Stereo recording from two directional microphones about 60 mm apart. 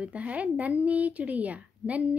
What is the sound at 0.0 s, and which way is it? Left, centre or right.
A woman's voice, right.